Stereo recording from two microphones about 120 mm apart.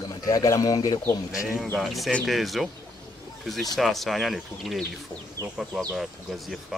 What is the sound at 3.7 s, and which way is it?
Speech, centre (ahead or behind).